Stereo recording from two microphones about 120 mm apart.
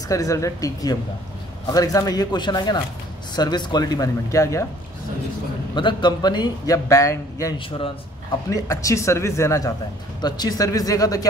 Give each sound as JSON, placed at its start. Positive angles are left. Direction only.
{"t": 0.1, "sound": "a man's voice", "side_deg": 30}
{"t": 5.8, "sound": "a man's voice", "side_deg": 40}
{"t": 7.5, "sound": "speech", "side_deg": 45}
{"t": 8.5, "sound": "a man's voice", "side_deg": 25}